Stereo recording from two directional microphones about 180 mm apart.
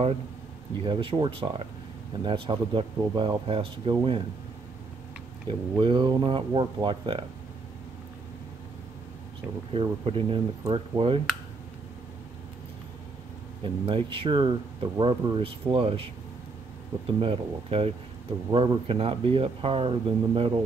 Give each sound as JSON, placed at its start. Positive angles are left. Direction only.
{"t": 0.8, "sound": "speech", "side_deg": -25}
{"t": 5.5, "sound": "speech", "side_deg": -25}
{"t": 9.7, "sound": "speech", "side_deg": -30}
{"t": 13.7, "sound": "speech", "side_deg": -25}
{"t": 17.2, "sound": "speech", "side_deg": -30}